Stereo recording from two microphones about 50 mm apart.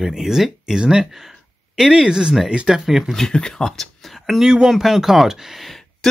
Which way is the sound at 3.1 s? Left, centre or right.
Centre.